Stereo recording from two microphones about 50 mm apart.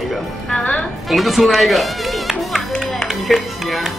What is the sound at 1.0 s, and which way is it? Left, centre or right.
Music, centre.